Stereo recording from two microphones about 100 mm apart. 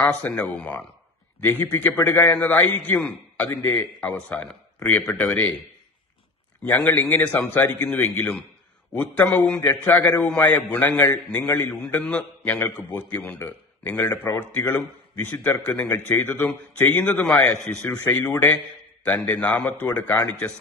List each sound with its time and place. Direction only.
0.1 s a man's voice: 15° left (ahead or behind)
6.6 s a man's voice: 15° left (ahead or behind)
12.0 s a man's voice: 10° left (ahead or behind)